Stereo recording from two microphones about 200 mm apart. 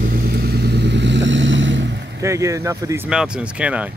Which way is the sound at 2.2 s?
15° right (ahead or behind).